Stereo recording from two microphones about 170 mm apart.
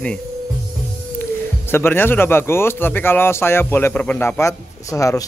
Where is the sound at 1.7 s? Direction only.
10° left (ahead or behind).